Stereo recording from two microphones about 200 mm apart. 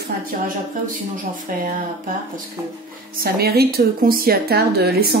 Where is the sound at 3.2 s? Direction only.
50° right (ahead or behind).